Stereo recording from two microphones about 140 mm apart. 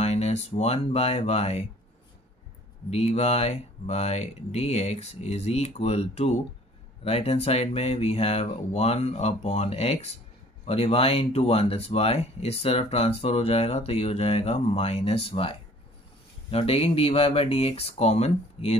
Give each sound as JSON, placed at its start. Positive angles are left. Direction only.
{"t": 0.0, "sound": "speech", "side_deg": 50}
{"t": 2.9, "sound": "speech", "side_deg": 50}